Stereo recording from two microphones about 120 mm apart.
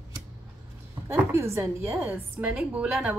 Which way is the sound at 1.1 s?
20° right (ahead or behind).